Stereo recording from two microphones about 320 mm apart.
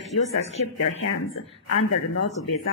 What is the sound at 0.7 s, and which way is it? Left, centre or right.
Speech, left.